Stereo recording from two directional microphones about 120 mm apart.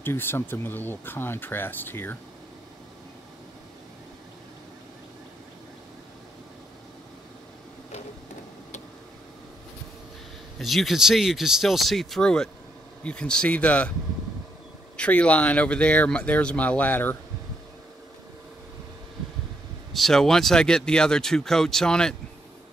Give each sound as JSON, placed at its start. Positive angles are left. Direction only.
{"t": 0.0, "sound": "speech", "side_deg": 20}
{"t": 10.6, "sound": "speech", "side_deg": 0}
{"t": 15.0, "sound": "speech", "side_deg": 10}
{"t": 19.9, "sound": "speech", "side_deg": 0}